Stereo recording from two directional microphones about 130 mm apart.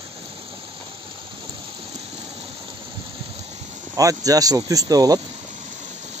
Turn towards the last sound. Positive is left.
turn(degrees=-30)  # may be behind; listen again after turning